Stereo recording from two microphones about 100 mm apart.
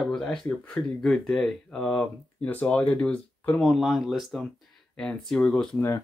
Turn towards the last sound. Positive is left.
turn(degrees=30)  # may be behind; listen again after turning